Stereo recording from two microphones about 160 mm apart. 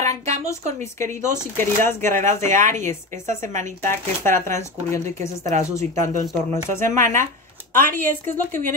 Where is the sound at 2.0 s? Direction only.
50° right (ahead or behind).